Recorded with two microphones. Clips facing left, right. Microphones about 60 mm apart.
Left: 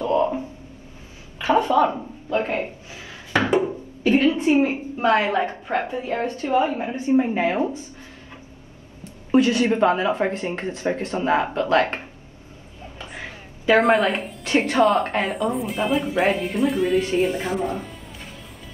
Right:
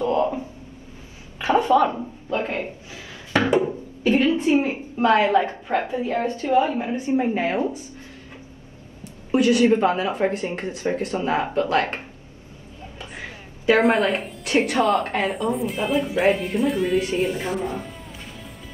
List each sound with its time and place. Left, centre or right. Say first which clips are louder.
1.6 s speech: right 1 dB; right
1.9 s a sound: left 1 dB; left
4.0 s a woman's voice: left 1 dB; left
9.0 s a woman's voice: left 1 dB; left
13.7 s speech: left 2 dB; centre
14.4 s speech: left 2 dB; left
15.4 s speech: left 1 dB; centre